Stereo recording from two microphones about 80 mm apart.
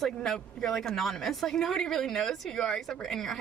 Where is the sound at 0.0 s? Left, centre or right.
Centre.